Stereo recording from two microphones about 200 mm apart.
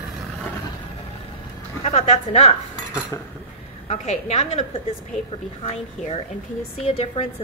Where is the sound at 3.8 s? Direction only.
30° left (ahead or behind).